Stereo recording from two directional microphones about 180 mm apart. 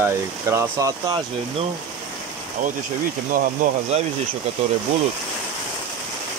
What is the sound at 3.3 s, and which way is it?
Speech, 50° right (ahead or behind).